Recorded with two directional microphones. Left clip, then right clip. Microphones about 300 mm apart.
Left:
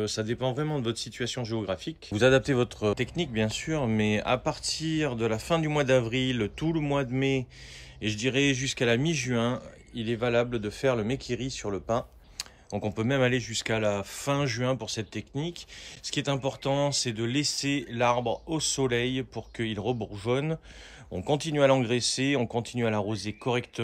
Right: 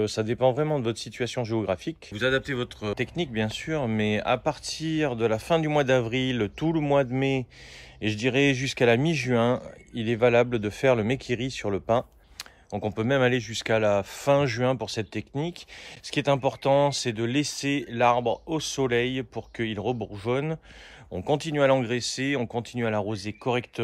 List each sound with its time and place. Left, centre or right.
0.0 s speech: centre
2.1 s speech: centre; by 11.8 s right
12.4 s speech: centre